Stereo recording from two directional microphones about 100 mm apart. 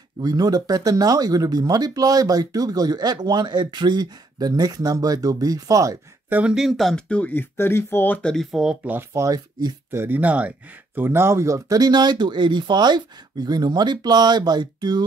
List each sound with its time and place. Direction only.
0.2 s speech: 40° right (ahead or behind)
6.2 s speech: 20° right (ahead or behind)
6.5 s speech: centre (ahead or behind)
9.1 s speech: 35° right (ahead or behind)
9.8 s speech: 25° right (ahead or behind); by 15.0 s 45° right (ahead or behind)